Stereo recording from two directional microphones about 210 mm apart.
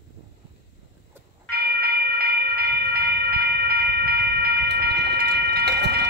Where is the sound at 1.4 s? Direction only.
45° right (ahead or behind).